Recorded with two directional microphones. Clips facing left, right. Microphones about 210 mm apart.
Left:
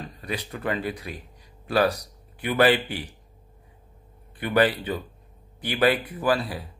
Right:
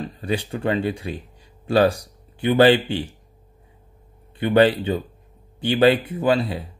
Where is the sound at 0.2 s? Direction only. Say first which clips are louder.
Right 6 dB; 30° right (ahead or behind).